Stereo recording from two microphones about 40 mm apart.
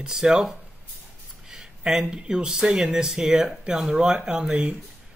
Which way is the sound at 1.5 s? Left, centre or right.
Centre.